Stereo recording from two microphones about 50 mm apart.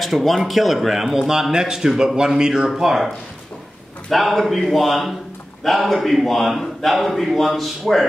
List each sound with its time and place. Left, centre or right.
0.0 s a man's voice: centre
4.1 s a man's voice: centre